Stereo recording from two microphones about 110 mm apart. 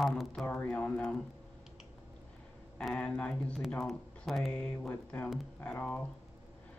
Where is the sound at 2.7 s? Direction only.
10° left (ahead or behind).